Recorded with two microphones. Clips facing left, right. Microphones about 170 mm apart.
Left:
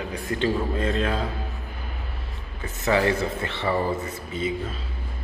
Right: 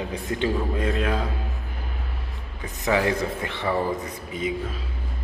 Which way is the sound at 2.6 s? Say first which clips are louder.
Left 1 dB; 10° right (ahead or behind).